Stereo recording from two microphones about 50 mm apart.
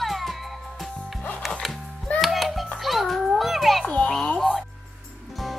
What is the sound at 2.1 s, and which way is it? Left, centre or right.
Music, centre.